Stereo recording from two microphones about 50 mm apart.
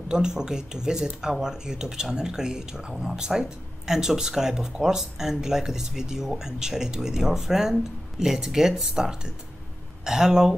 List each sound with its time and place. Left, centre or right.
0.1 s speech: centre